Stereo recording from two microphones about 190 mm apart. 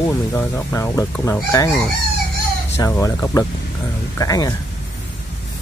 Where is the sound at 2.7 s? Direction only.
15° left (ahead or behind).